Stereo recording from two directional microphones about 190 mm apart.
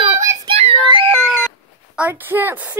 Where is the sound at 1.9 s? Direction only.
10° right (ahead or behind).